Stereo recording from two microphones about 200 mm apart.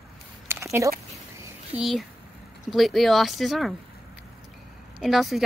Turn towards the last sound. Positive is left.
turn(degrees=0)  # may be behind; listen again after turning